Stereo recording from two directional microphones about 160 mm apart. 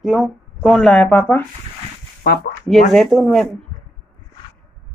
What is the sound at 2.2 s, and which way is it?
Speech, 90° left.